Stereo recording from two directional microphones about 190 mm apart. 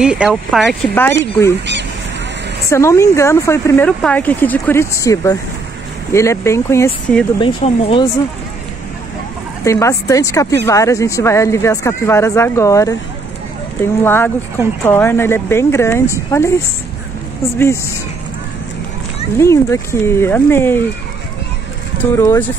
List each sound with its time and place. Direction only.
0.0 s speech: 5° right (ahead or behind)
0.9 s speech: 10° left (ahead or behind)
2.7 s speech: 15° left (ahead or behind)
7.3 s speech: 30° left (ahead or behind)
9.7 s speech: 15° left (ahead or behind)
14.0 s speech: 10° left (ahead or behind)
19.3 s speech: 15° left (ahead or behind)
22.1 s speech: 15° left (ahead or behind)